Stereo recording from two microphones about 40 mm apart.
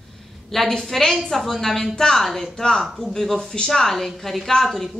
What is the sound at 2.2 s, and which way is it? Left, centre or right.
Speech, centre.